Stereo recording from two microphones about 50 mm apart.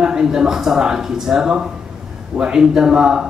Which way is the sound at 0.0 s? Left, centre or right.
Centre.